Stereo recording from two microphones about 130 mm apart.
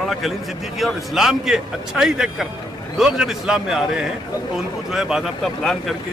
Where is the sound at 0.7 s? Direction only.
Centre (ahead or behind).